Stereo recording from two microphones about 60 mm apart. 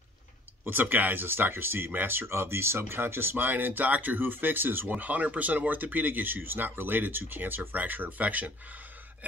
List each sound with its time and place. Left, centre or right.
0.7 s speech: right